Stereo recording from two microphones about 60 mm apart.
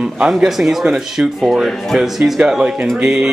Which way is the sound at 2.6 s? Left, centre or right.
Centre.